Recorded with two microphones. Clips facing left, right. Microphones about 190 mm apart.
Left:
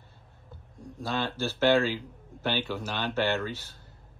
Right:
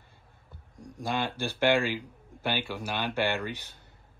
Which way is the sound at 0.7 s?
15° right (ahead or behind).